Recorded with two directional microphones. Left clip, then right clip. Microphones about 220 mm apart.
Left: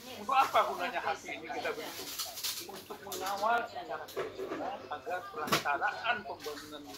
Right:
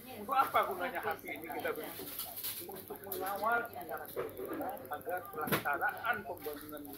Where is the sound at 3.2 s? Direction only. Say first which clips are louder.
Left 3 dB; 25° left (ahead or behind).